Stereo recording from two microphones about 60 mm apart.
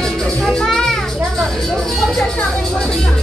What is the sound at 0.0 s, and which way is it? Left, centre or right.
Music, centre.